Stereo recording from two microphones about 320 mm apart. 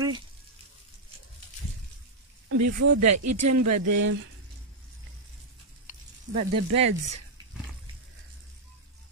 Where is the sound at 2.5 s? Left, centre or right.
Right.